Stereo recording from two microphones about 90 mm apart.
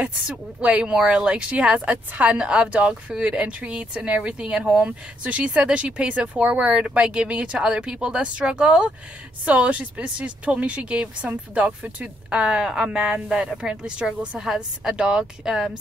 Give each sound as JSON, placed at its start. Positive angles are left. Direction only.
{"t": 0.6, "sound": "speech", "side_deg": -15}